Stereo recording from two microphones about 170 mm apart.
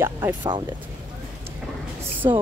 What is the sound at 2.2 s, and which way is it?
Speech, 20° right (ahead or behind).